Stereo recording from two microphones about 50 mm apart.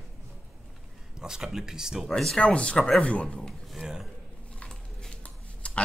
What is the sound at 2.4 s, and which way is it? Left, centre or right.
A man's voice, centre.